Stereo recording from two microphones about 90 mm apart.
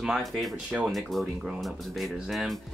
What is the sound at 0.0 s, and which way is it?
Speech, centre (ahead or behind).